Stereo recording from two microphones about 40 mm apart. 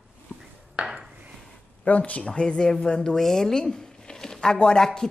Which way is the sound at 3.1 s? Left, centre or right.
Centre.